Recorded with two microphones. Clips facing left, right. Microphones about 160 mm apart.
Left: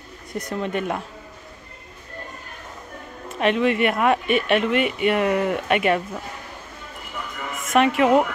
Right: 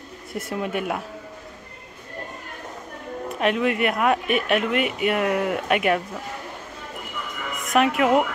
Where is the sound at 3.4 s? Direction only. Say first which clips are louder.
Left 2 dB; centre (ahead or behind).